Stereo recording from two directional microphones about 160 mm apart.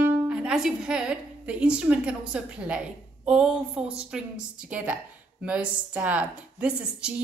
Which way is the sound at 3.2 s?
5° right (ahead or behind).